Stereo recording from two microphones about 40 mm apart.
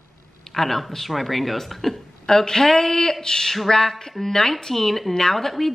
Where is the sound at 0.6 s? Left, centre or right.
Centre.